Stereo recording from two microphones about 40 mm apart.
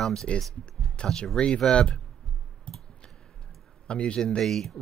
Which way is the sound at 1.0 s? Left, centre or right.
Left.